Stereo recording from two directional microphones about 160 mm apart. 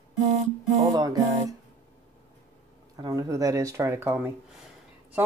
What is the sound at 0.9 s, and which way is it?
Speech, 25° right (ahead or behind).